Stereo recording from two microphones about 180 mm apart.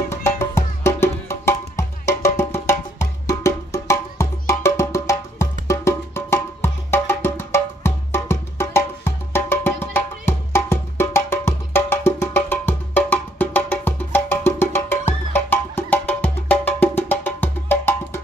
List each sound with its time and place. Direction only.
0.1 s music: 15° left (ahead or behind)